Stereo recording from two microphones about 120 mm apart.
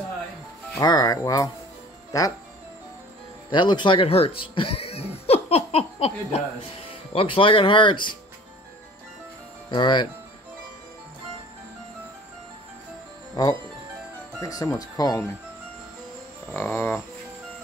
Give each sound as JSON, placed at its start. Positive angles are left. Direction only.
{"t": 0.7, "sound": "speech", "side_deg": 30}
{"t": 3.4, "sound": "speech", "side_deg": 40}
{"t": 9.7, "sound": "speech", "side_deg": 40}
{"t": 14.4, "sound": "speech", "side_deg": 25}
{"t": 16.5, "sound": "music", "side_deg": 20}